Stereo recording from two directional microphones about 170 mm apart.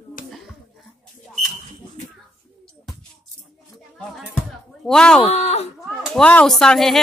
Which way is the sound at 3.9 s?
5° left (ahead or behind).